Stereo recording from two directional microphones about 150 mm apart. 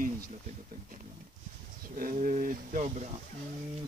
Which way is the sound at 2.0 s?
65° right (ahead or behind).